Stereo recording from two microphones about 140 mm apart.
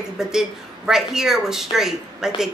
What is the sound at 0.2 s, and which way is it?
Speech, 5° right (ahead or behind).